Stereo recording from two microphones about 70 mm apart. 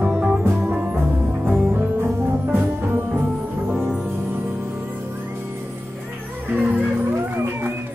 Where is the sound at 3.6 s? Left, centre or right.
Centre.